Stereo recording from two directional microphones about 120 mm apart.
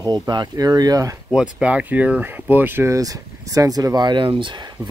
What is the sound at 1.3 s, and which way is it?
Speech, 5° right (ahead or behind).